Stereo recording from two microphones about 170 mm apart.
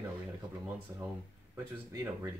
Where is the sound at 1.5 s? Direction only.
15° right (ahead or behind).